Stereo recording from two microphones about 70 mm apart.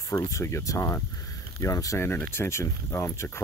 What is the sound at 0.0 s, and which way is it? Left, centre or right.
Speech, left.